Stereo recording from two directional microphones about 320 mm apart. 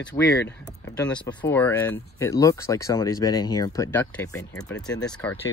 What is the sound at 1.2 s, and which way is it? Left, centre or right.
Speech, centre.